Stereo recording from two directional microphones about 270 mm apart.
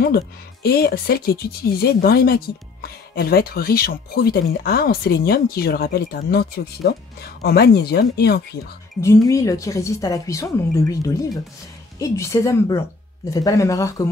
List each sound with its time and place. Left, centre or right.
0.0 s speech: left
9.0 s speech: centre